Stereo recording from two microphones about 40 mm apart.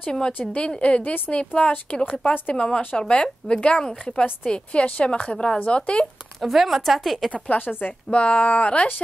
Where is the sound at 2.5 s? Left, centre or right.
Left.